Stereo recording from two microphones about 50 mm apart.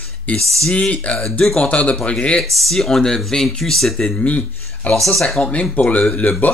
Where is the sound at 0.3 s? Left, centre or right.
Left.